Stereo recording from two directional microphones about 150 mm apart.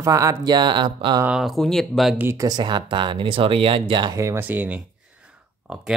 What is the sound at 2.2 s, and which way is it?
Speech, 20° right (ahead or behind).